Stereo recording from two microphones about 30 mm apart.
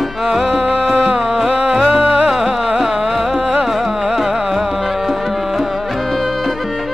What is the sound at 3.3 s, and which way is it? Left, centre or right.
Music, right.